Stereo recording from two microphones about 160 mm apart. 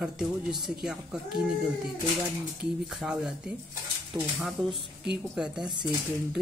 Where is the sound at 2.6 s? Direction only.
Centre (ahead or behind).